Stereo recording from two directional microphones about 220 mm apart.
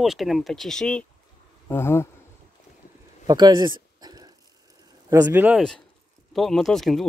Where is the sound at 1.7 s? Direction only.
10° left (ahead or behind).